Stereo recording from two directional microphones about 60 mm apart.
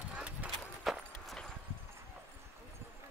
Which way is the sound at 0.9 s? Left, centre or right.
Centre.